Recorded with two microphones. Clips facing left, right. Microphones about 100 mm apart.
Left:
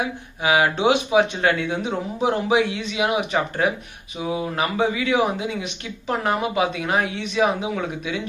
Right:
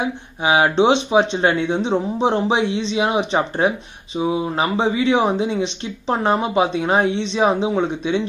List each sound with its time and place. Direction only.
0.0 s speech: 25° right (ahead or behind)